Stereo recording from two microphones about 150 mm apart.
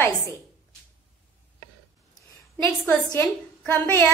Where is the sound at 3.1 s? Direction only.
10° left (ahead or behind).